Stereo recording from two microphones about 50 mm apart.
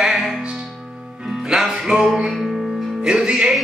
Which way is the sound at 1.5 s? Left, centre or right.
Centre.